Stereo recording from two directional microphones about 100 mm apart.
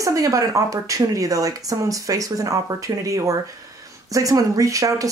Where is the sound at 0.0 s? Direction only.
35° right (ahead or behind).